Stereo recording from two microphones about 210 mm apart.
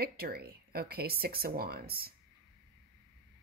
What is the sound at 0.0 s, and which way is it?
Speech, 45° right (ahead or behind).